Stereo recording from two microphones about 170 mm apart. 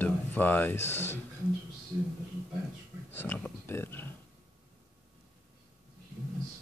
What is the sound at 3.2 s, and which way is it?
Speech, 10° left (ahead or behind).